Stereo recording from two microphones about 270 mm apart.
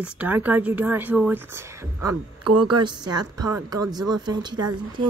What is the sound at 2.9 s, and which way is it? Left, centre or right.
Speech, centre.